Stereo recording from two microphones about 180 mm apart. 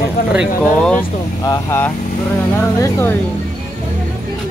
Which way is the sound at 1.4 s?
15° left (ahead or behind).